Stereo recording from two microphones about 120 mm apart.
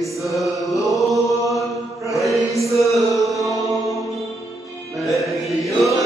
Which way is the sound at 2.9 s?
Centre (ahead or behind).